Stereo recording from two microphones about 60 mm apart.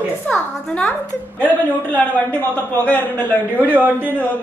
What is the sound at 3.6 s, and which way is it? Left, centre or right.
Speech, right.